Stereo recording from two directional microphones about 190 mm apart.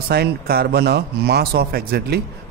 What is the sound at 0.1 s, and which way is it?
A man's voice, 55° right (ahead or behind).